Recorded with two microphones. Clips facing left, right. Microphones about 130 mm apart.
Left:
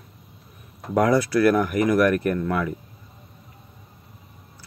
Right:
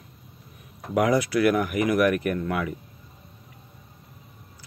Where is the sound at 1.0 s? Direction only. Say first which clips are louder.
Left 2 dB; 15° right (ahead or behind).